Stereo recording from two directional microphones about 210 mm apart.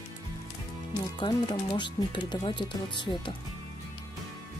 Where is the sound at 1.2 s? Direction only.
25° left (ahead or behind).